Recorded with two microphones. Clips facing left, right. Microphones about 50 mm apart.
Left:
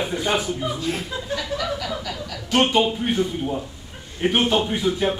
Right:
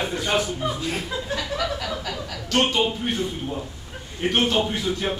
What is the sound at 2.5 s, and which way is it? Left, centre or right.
A man's voice, centre.